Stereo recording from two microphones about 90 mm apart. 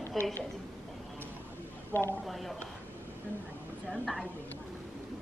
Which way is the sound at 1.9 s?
25° left (ahead or behind).